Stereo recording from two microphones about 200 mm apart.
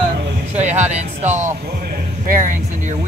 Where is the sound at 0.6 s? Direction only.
35° right (ahead or behind).